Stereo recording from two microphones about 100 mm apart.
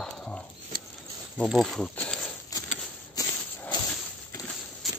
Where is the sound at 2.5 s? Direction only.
40° left (ahead or behind).